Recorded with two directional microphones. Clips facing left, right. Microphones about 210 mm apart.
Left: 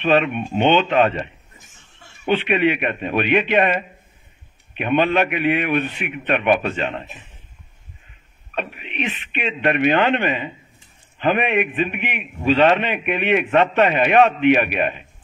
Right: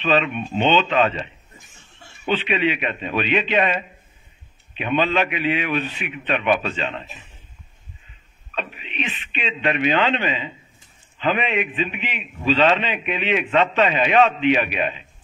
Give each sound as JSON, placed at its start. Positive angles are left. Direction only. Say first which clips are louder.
{"t": 0.0, "sound": "a man's voice", "louder": "left 3 dB", "side_deg": 55}
{"t": 8.5, "sound": "a man's voice", "louder": "left 3 dB", "side_deg": 55}